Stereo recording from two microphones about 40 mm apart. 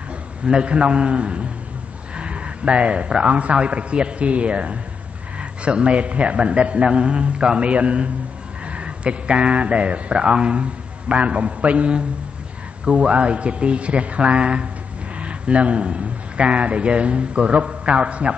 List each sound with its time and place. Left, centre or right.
0.5 s a man's voice: right